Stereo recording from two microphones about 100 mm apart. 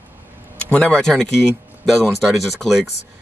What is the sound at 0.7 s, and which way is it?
Speech, 10° left (ahead or behind).